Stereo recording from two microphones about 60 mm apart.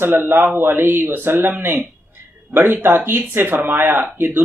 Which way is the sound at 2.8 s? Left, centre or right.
Right.